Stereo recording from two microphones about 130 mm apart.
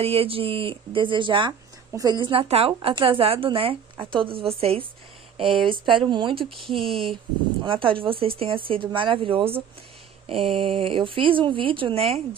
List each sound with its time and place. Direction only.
0.0 s speech: 50° right (ahead or behind)
1.9 s speech: 30° right (ahead or behind); by 12.2 s 50° right (ahead or behind)